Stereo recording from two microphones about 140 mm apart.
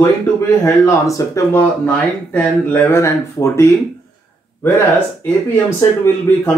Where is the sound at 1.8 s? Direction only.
10° left (ahead or behind).